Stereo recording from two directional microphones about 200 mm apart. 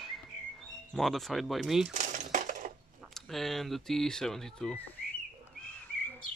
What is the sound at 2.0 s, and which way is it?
Coin, 40° right (ahead or behind).